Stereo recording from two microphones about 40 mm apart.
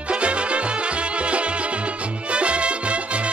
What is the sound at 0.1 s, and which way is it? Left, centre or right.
Music, right.